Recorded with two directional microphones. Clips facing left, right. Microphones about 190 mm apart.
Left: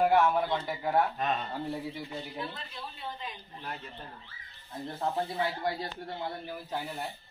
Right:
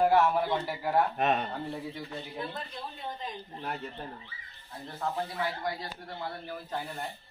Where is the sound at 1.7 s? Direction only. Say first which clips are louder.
Left 1 dB; centre (ahead or behind).